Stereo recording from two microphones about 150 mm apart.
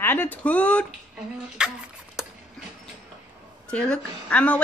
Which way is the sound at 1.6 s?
5° right (ahead or behind).